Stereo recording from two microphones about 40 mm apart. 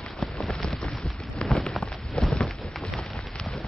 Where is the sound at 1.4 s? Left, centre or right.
Centre.